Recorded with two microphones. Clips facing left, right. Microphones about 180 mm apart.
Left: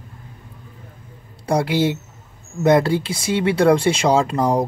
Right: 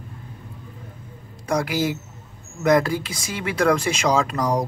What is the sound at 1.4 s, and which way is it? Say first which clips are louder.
Speech: left 4 dB; 30° left (ahead or behind).